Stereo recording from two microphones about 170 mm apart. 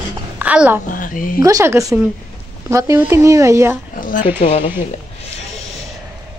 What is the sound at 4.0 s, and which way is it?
Speech, 55° left (ahead or behind).